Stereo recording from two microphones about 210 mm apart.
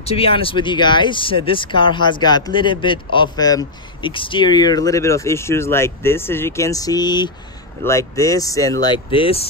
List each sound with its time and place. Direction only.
0.0 s speech: 25° left (ahead or behind)